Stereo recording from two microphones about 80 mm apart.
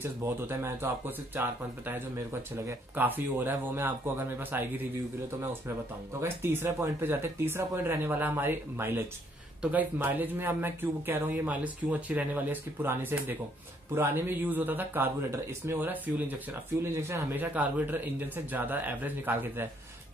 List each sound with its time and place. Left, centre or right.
0.0 s speech: right
6.2 s speech: right